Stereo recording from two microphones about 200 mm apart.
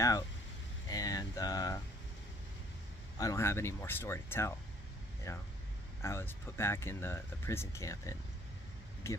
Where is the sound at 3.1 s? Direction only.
15° left (ahead or behind).